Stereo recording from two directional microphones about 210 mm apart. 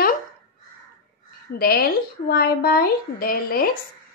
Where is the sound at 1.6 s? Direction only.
45° left (ahead or behind).